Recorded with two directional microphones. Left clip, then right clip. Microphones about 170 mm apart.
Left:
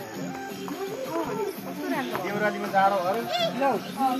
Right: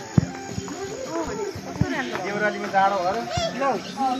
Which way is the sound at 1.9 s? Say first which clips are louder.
Right 1 dB; 35° right (ahead or behind).